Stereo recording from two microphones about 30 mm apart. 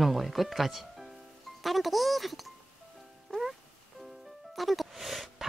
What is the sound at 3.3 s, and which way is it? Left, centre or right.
Music, left.